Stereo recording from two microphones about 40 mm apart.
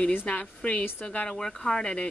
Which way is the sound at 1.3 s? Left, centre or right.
Centre.